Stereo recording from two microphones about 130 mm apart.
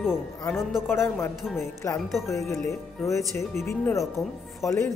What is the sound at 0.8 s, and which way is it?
Speech, 20° left (ahead or behind).